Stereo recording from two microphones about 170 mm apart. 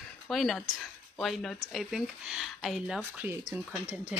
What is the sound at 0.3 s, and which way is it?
Speech, centre (ahead or behind).